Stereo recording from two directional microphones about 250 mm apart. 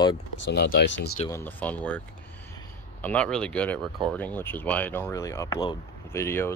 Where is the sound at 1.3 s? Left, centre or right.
Centre.